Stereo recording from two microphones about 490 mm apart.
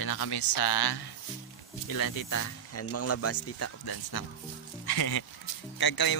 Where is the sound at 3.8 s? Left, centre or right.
Left.